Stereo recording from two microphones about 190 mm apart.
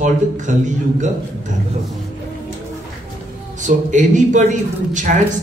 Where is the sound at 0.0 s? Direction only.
40° right (ahead or behind).